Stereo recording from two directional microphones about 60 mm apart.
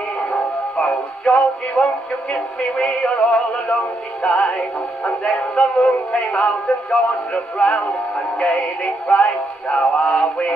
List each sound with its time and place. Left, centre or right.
0.3 s music: centre
2.3 s synthetic singing: centre